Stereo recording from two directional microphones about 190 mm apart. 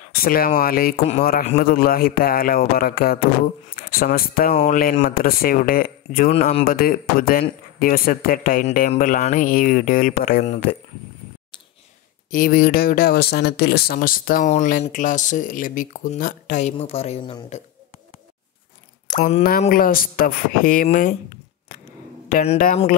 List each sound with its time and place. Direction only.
0.0 s speech: 50° left (ahead or behind)
12.3 s speech: 50° left (ahead or behind); by 17.6 s 35° left (ahead or behind)
19.1 s speech: 45° left (ahead or behind)
22.3 s speech: 40° left (ahead or behind)